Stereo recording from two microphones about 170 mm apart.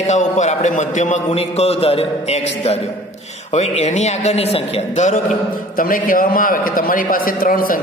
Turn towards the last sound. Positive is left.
turn(degrees=55)  # may be behind; listen again after turning